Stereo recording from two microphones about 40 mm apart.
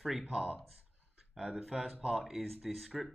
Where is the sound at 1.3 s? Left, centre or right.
Centre.